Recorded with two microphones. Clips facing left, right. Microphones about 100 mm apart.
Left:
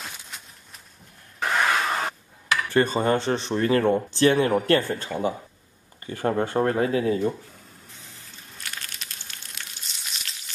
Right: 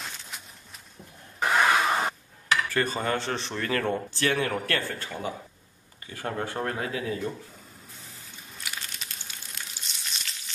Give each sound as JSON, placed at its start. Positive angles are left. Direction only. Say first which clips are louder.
{"t": 1.4, "sound": "vehicle", "louder": "right 1 dB", "side_deg": -5}
{"t": 2.7, "sound": "speech", "louder": "left 6 dB", "side_deg": 25}
{"t": 8.0, "sound": "crushing", "louder": "even", "side_deg": 0}